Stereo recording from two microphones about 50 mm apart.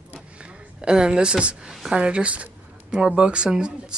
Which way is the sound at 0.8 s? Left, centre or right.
Centre.